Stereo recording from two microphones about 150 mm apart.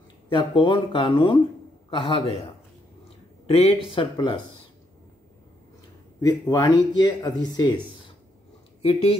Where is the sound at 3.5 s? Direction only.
45° left (ahead or behind).